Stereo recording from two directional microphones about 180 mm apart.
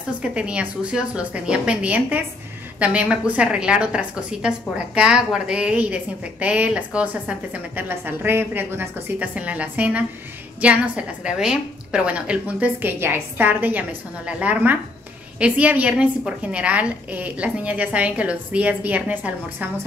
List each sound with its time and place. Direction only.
0.2 s a woman's voice: 5° right (ahead or behind)